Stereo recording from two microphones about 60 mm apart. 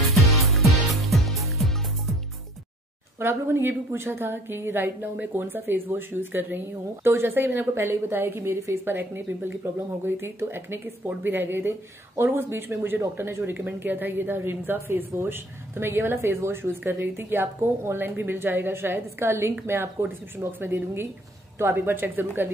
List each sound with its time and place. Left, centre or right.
0.3 s music: centre
3.2 s a woman's voice: right
13.4 s a woman's voice: right